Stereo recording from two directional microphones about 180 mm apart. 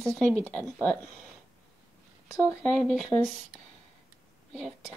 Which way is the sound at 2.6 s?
Centre (ahead or behind).